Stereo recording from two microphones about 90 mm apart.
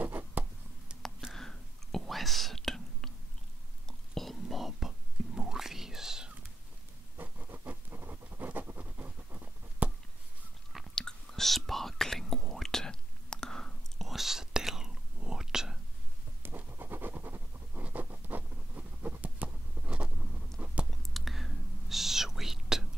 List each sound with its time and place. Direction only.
0.0 s writing: 20° right (ahead or behind)
1.0 s whispering: 5° left (ahead or behind)
7.2 s scratch: 20° right (ahead or behind)
11.0 s whispering: 5° left (ahead or behind)
16.4 s scratch: 25° right (ahead or behind)
20.5 s a sound: 20° right (ahead or behind)
20.9 s whispering: centre (ahead or behind)